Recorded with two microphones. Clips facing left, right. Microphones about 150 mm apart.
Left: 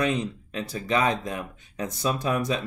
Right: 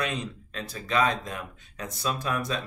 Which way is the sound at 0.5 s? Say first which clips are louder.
Left 1 dB; 15° left (ahead or behind).